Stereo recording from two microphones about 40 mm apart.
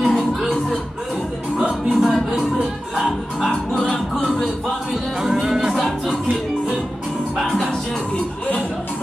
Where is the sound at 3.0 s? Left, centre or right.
Centre.